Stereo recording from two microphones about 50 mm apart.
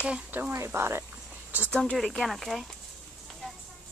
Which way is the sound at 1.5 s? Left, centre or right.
Right.